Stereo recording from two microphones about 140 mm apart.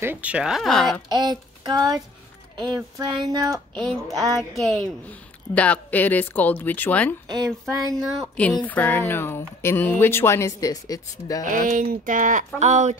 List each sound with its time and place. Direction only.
0.0 s speech: 10° right (ahead or behind)
1.1 s child singing: 30° right (ahead or behind)
2.5 s speech: 30° right (ahead or behind)
3.7 s speech: 5° left (ahead or behind)
7.2 s speech: 30° right (ahead or behind)
7.9 s speech: centre (ahead or behind); by 11.4 s 25° left (ahead or behind)
11.4 s speech: 75° right (ahead or behind)
12.5 s speech: 55° right (ahead or behind)